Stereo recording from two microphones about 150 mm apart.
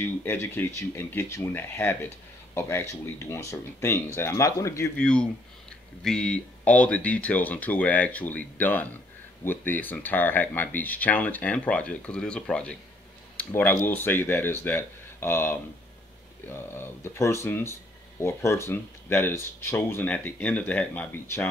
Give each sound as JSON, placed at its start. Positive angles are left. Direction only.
{"t": 0.0, "sound": "speech", "side_deg": 15}
{"t": 4.9, "sound": "speech", "side_deg": 5}